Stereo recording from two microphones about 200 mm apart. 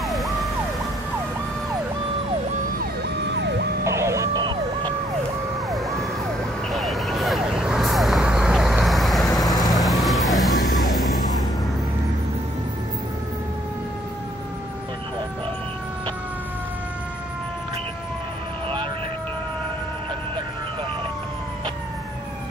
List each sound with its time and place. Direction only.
0.0 s emergency vehicle: centre (ahead or behind)
3.3 s emergency vehicle: 60° right (ahead or behind)
3.8 s emergency vehicle: 15° right (ahead or behind)
5.7 s emergency vehicle: centre (ahead or behind)
6.7 s vehicle: centre (ahead or behind)
10.9 s music: centre (ahead or behind)